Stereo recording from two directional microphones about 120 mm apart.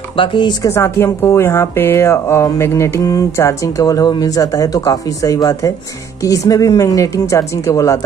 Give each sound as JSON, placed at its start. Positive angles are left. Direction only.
{"t": 0.1, "sound": "speech", "side_deg": 45}
{"t": 0.7, "sound": "speech", "side_deg": 25}